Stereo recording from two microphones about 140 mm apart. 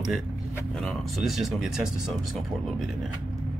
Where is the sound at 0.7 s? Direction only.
Centre (ahead or behind).